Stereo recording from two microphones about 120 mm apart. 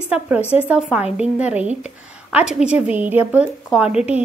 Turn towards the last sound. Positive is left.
turn(degrees=-10)  # may be behind; listen again after turning